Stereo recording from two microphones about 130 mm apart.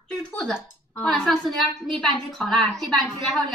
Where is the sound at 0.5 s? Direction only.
5° right (ahead or behind).